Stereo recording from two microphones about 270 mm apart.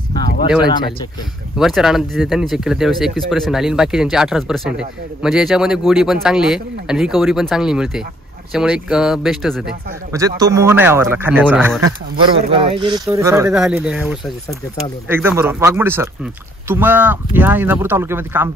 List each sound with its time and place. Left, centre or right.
1.6 s speech: centre
10.1 s speech: centre
12.4 s speech: right